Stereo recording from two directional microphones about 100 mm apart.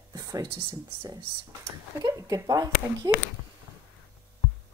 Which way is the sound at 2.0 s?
40° right (ahead or behind).